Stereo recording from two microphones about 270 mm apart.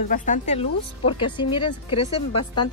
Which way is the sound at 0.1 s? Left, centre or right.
Left.